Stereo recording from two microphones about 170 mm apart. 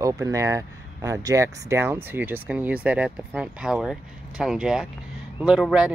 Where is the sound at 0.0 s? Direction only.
20° right (ahead or behind).